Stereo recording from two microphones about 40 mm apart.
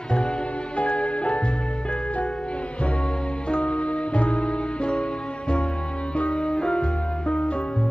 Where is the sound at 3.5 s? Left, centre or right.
Left.